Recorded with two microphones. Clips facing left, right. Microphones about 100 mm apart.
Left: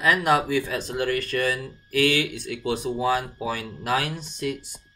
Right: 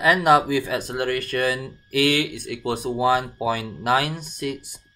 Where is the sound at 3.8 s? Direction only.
70° right (ahead or behind).